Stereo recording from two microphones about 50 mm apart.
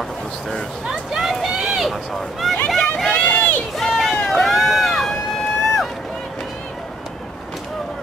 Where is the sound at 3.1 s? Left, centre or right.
Left.